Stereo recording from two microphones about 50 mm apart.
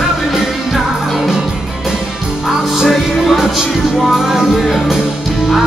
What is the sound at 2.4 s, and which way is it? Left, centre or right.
Music, centre.